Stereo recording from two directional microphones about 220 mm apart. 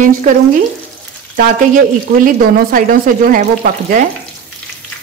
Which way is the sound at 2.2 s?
40° right (ahead or behind).